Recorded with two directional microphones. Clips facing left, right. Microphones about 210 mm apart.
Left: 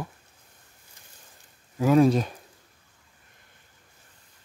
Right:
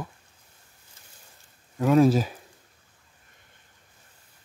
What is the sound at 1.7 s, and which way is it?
Speech, centre (ahead or behind).